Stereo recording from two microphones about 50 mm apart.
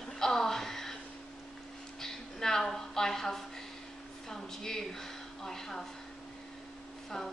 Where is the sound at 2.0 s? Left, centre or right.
Centre.